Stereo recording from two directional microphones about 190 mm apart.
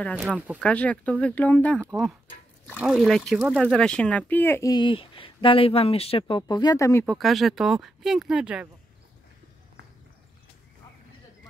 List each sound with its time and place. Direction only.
0.6 s speech: 5° left (ahead or behind)
7.1 s speech: centre (ahead or behind)